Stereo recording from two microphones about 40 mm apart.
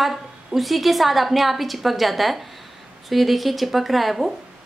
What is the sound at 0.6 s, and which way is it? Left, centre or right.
A woman's voice, centre.